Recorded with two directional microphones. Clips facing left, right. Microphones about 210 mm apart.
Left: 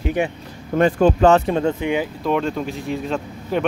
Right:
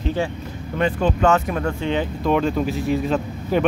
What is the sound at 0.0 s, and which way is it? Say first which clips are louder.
Speech: left 2 dB; 15° left (ahead or behind).